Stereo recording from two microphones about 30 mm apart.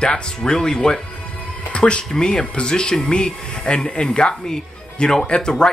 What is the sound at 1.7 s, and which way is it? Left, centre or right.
Speech, left.